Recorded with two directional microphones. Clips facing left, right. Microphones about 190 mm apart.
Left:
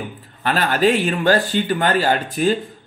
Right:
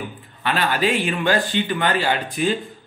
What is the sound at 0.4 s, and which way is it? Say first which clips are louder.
A man's voice: left 3 dB; 45° left (ahead or behind).